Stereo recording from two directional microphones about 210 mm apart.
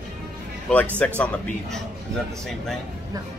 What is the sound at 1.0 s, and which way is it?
Speech, 5° left (ahead or behind).